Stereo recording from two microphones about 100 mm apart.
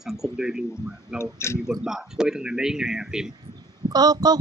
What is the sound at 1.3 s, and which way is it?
Speech, 25° left (ahead or behind).